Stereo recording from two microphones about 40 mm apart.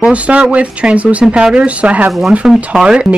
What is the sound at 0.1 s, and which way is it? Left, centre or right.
Speech, right.